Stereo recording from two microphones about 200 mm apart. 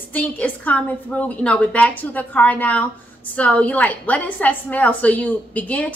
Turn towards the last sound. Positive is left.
turn(degrees=5)  # may be behind; listen again after turning